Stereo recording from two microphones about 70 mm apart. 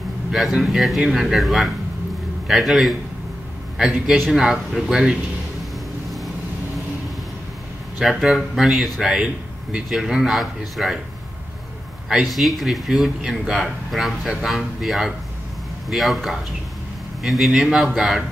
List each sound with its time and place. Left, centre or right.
0.3 s speech: centre
4.3 s speech: centre
5.6 s vehicle: centre
8.0 s speech: centre
9.2 s speech: centre
9.8 s speech: centre
12.1 s speech: centre